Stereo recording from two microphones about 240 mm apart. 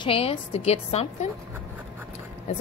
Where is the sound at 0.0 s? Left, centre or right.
Left.